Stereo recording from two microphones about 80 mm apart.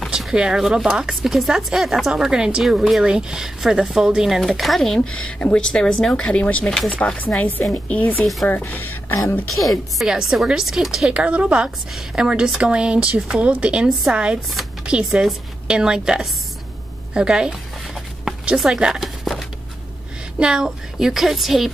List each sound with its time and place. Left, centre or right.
0.1 s speech: centre
5.4 s speech: centre
9.9 s speech: centre
18.6 s speech: centre